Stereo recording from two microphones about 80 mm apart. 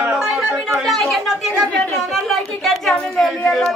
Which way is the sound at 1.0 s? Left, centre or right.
Centre.